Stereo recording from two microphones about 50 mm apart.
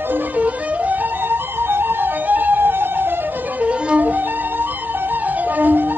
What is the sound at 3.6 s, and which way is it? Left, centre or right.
Music, right.